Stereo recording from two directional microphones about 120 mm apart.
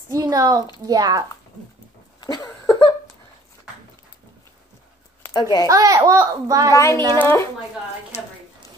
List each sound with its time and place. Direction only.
0.1 s a woman's voice: 30° right (ahead or behind)
2.1 s a sound: 35° left (ahead or behind)
5.3 s a woman's voice: 35° left (ahead or behind)
5.7 s a child's voice: 30° right (ahead or behind)
6.7 s a woman's voice: 25° left (ahead or behind)